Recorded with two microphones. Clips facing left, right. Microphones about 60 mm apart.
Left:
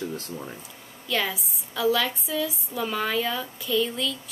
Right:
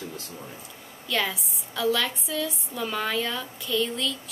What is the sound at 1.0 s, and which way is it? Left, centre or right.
A woman's voice, centre.